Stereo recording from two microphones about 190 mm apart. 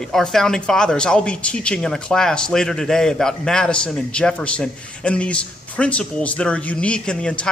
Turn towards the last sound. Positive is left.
turn(degrees=5)  # may be behind; listen again after turning